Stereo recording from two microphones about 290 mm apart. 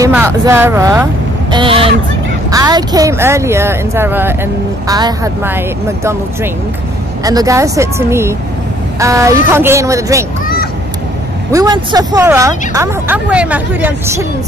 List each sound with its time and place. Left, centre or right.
0.0 s speech: centre
11.5 s speech: centre